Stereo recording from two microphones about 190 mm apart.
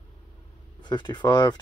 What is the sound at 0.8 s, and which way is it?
Speech, 25° left (ahead or behind).